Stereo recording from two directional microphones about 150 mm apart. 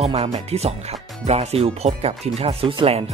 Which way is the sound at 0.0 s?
45° right (ahead or behind).